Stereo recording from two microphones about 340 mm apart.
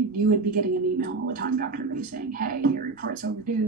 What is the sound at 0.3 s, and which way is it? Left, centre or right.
Speech, right.